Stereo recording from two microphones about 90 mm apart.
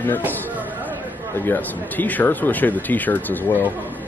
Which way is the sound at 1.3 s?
25° left (ahead or behind).